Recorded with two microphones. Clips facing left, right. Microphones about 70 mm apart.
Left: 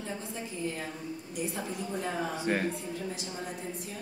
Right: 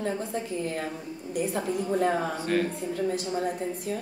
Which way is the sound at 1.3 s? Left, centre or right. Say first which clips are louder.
Right 9 dB; right.